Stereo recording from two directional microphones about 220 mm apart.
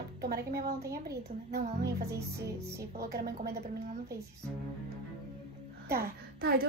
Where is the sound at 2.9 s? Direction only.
45° right (ahead or behind).